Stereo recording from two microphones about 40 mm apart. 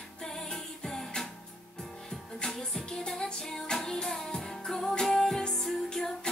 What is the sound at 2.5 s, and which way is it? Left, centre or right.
Music, centre.